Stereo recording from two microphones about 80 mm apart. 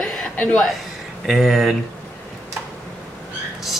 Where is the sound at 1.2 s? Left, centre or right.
Centre.